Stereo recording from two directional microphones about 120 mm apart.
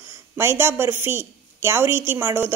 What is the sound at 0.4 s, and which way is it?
Speech, 20° right (ahead or behind).